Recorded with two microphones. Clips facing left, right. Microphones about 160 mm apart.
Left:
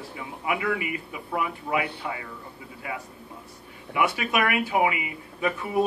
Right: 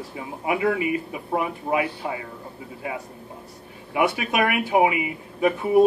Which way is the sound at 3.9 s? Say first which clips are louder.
Right 2 dB; 25° right (ahead or behind).